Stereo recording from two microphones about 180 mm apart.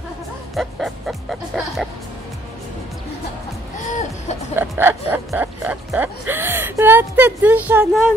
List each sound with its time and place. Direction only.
0.6 s music: centre (ahead or behind)
3.7 s music: 45° left (ahead or behind)
4.6 s music: 10° right (ahead or behind)